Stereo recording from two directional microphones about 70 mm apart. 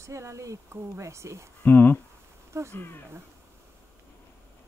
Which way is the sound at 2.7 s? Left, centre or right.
Left.